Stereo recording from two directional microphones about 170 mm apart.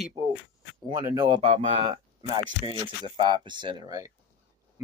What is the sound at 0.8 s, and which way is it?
Speech, 25° right (ahead or behind).